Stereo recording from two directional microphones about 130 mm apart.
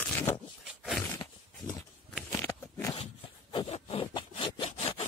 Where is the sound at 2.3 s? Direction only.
20° left (ahead or behind).